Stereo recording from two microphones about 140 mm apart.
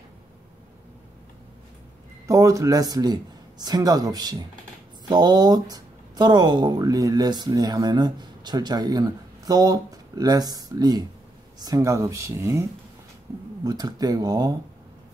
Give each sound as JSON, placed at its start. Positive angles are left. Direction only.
{"t": 2.2, "sound": "speech", "side_deg": -25}
{"t": 13.7, "sound": "speech", "side_deg": -30}